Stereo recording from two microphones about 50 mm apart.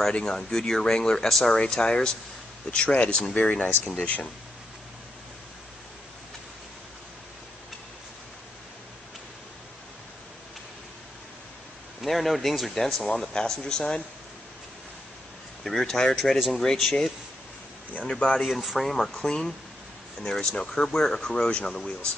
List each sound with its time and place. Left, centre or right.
0.1 s speech: centre
12.0 s speech: centre
15.6 s speech: centre
18.0 s speech: centre
18.4 s speech: centre